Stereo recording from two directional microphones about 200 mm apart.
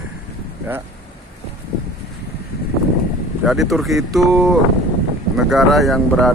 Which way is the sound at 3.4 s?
Centre (ahead or behind).